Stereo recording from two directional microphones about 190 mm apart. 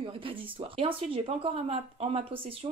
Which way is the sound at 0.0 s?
30° right (ahead or behind).